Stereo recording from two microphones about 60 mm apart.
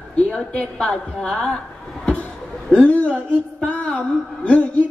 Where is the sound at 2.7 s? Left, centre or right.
Left.